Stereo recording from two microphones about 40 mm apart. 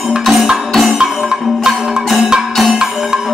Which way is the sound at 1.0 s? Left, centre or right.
Centre.